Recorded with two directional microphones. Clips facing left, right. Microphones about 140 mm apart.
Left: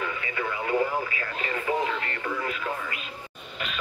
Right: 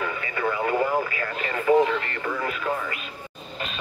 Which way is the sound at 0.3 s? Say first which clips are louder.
Right 3 dB; 40° right (ahead or behind).